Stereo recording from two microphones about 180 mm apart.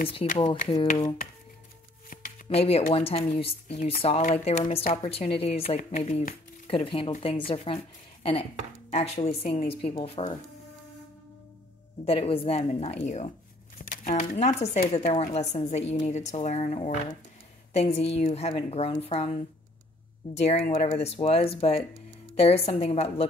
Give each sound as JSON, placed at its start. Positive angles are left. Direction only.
{"t": 0.4, "sound": "speech", "side_deg": 25}
{"t": 2.5, "sound": "speech", "side_deg": 35}
{"t": 12.0, "sound": "speech", "side_deg": 30}
{"t": 14.6, "sound": "speech", "side_deg": 55}
{"t": 15.0, "sound": "speech", "side_deg": 35}